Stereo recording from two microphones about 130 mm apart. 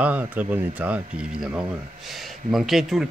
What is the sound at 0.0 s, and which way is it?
Speech, 10° right (ahead or behind).